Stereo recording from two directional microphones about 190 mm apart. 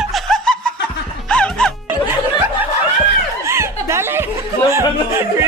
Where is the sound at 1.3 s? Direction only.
5° left (ahead or behind).